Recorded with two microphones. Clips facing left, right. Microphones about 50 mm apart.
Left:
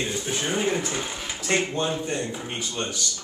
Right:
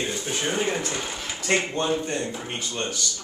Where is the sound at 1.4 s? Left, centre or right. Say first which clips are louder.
Right 1 dB; centre.